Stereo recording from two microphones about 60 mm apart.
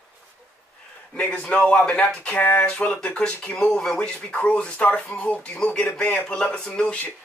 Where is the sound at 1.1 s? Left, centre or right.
Centre.